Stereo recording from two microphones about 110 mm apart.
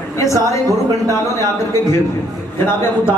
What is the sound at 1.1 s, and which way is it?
Speech, 25° left (ahead or behind).